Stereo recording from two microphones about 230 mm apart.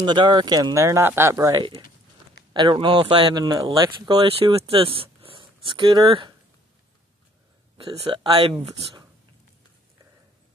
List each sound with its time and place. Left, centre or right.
0.0 s speech: centre
7.7 s speech: right